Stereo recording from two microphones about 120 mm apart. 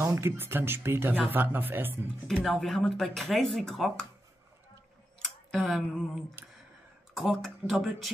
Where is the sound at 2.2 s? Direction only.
Centre (ahead or behind).